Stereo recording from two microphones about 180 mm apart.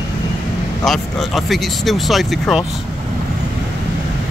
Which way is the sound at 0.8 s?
Centre (ahead or behind).